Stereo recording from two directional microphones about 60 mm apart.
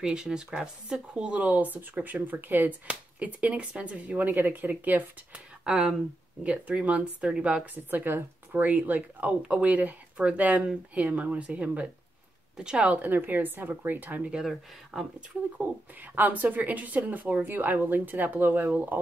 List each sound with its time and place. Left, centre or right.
0.0 s speech: centre; by 5.0 s right
5.3 s speech: centre
6.4 s speech: right
7.7 s a woman's voice: right; by 12.9 s centre
12.9 s speech: right
14.3 s speech: centre
15.5 s speech: right